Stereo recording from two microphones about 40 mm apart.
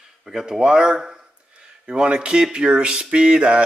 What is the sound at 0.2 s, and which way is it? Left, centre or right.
Speech, centre.